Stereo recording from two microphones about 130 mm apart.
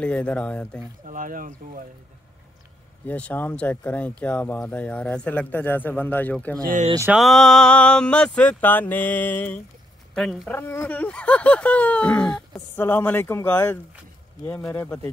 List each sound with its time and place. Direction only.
0.0 s speech: 10° left (ahead or behind)
1.0 s speech: 90° right
3.1 s speech: 10° left (ahead or behind)
7.1 s speech: centre (ahead or behind)
10.5 s speech: 15° left (ahead or behind)